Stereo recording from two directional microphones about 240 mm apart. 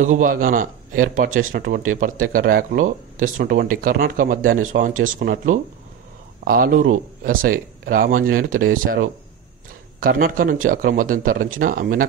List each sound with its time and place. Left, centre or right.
0.0 s speech: right